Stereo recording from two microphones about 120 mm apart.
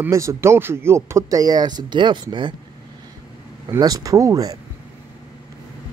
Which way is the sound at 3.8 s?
30° right (ahead or behind).